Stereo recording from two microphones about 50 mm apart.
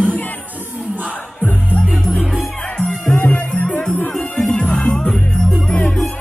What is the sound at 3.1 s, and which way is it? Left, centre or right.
Music, left.